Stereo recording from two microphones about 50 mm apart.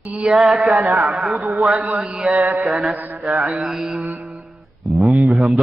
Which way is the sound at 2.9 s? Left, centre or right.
Right.